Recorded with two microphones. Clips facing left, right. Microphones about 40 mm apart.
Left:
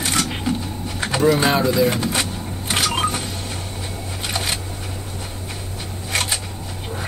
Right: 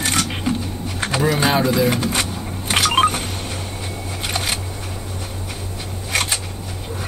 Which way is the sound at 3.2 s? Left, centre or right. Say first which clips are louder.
Right 2 dB; right.